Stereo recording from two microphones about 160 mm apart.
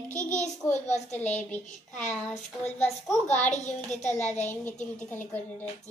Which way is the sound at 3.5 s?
45° left (ahead or behind).